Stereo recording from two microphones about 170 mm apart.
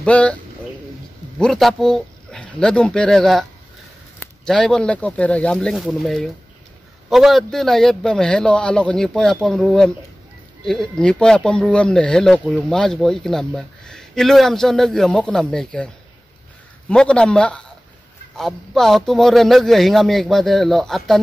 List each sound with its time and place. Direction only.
0.0 s speech: 5° left (ahead or behind)
1.4 s speech: centre (ahead or behind)
4.5 s speech: 5° left (ahead or behind)
16.9 s speech: 5° left (ahead or behind)